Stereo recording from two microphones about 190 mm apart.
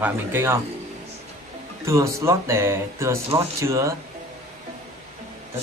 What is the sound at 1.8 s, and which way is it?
Speech, 15° right (ahead or behind).